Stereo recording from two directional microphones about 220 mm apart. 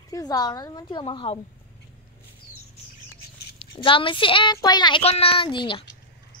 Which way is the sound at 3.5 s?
25° left (ahead or behind).